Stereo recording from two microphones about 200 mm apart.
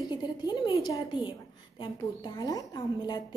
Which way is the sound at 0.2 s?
20° left (ahead or behind).